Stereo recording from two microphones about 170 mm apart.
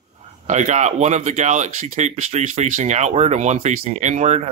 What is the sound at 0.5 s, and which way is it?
Speech, 45° right (ahead or behind).